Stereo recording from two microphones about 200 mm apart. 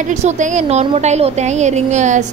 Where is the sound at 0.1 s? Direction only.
35° right (ahead or behind).